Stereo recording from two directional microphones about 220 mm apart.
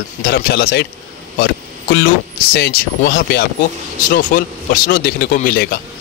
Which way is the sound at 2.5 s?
45° left (ahead or behind).